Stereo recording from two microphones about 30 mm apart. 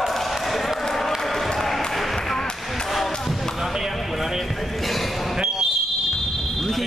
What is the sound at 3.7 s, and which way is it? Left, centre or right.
Basketball bounce, centre.